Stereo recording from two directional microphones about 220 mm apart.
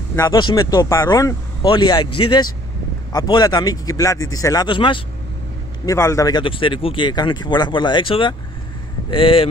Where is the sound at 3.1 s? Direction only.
15° left (ahead or behind).